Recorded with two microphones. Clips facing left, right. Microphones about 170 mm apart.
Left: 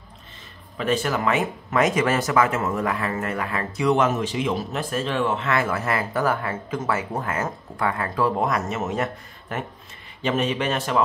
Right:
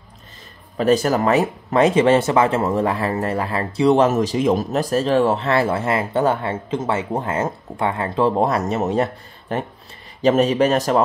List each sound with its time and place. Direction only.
0.7 s speech: 40° right (ahead or behind)